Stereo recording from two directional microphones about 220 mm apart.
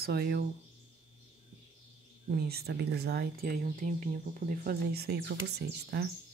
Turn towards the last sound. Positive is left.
turn(degrees=-50)  # may be behind; listen again after turning